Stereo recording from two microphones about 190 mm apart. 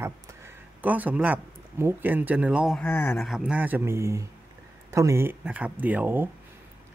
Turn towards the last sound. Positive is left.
turn(degrees=-10)  # may be behind; listen again after turning